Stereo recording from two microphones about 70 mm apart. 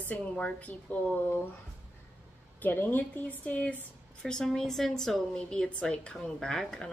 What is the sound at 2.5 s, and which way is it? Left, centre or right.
A woman's voice, left.